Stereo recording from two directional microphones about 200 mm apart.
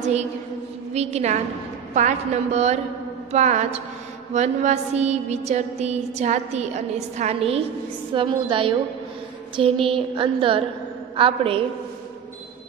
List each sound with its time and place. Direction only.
0.0 s a sound: 35° right (ahead or behind)
7.2 s speech: 30° right (ahead or behind)
9.8 s speech: 25° right (ahead or behind)